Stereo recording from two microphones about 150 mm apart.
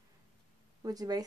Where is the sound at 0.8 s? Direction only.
25° right (ahead or behind).